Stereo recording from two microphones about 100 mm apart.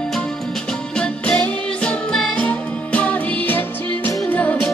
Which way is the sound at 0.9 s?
10° left (ahead or behind).